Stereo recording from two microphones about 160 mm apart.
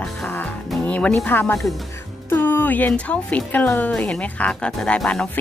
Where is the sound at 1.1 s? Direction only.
10° left (ahead or behind).